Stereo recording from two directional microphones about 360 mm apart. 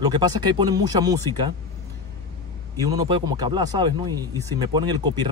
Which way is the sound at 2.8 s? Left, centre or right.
Centre.